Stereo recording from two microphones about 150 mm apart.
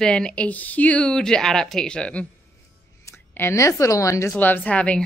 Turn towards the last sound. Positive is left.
turn(degrees=10)  # may be behind; listen again after turning